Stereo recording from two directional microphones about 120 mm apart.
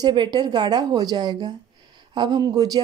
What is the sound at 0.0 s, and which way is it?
Speech, 40° right (ahead or behind).